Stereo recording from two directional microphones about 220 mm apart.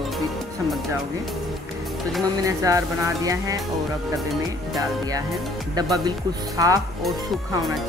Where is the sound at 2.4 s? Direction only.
15° right (ahead or behind).